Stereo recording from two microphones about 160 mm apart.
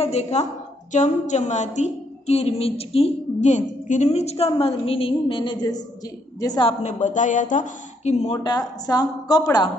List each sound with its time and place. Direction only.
0.0 s a woman's voice: 40° left (ahead or behind); by 6.7 s 25° left (ahead or behind)
6.8 s speech: 45° left (ahead or behind)
8.5 s a woman's voice: 25° left (ahead or behind)